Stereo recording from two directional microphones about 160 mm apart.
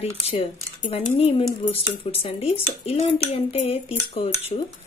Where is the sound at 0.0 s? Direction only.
35° left (ahead or behind).